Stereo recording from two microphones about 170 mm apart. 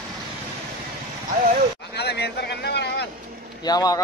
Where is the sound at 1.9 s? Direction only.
75° left (ahead or behind).